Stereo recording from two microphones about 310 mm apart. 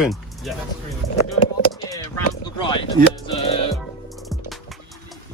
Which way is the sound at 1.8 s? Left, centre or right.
Centre.